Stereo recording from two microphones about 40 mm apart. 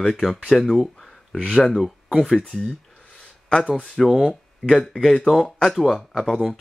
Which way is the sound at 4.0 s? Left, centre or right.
Centre.